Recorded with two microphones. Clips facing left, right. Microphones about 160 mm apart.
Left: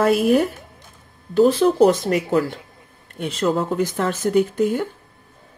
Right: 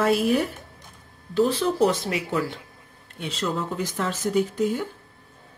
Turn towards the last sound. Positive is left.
turn(degrees=60)  # may be behind; listen again after turning